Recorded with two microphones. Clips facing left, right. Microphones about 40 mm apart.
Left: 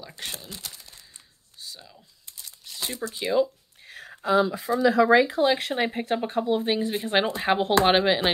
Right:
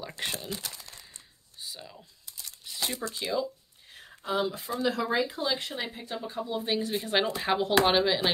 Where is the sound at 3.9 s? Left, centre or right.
Left.